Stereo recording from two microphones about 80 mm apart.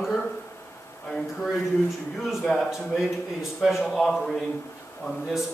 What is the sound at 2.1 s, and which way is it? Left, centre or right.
A man's voice, centre.